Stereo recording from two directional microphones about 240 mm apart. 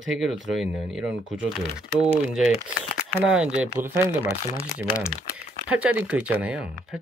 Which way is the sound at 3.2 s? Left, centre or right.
Centre.